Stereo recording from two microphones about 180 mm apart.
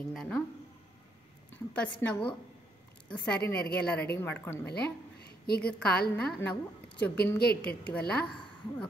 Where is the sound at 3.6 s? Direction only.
60° left (ahead or behind).